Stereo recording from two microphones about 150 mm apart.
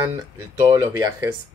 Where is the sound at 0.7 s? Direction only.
20° right (ahead or behind).